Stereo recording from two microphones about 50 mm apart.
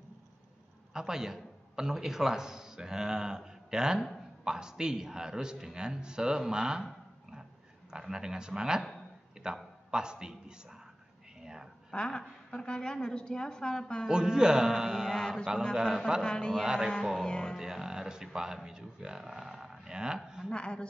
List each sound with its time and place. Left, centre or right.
0.9 s a man's voice: centre
7.9 s a man's voice: centre
9.4 s a sound: centre
9.8 s a man's voice: centre
11.9 s a woman's voice: centre
14.0 s a man's voice: centre
15.1 s a woman's voice: centre
15.7 s a man's voice: centre
16.2 s a woman's voice: centre
17.6 s speech: centre
20.5 s a woman's voice: centre